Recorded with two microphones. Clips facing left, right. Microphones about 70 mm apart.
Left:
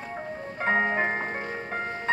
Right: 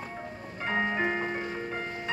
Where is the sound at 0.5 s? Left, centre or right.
Left.